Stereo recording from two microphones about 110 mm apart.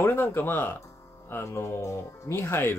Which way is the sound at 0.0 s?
20° left (ahead or behind).